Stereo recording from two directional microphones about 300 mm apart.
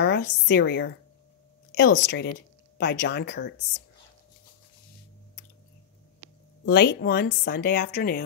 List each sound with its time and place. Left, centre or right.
0.0 s speech: left
6.6 s speech: left